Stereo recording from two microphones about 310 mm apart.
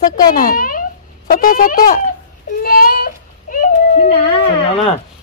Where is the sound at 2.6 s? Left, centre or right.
Left.